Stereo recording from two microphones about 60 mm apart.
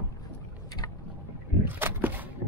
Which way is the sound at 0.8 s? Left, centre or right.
Left.